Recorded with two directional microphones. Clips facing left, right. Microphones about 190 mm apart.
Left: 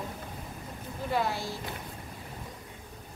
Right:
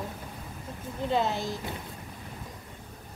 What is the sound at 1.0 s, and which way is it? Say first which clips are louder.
Speech: right 3 dB; 20° right (ahead or behind).